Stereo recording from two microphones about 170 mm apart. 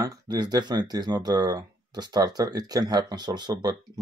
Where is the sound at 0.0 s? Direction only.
20° right (ahead or behind).